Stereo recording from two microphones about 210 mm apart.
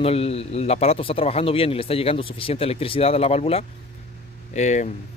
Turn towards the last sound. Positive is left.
turn(degrees=35)  # may be behind; listen again after turning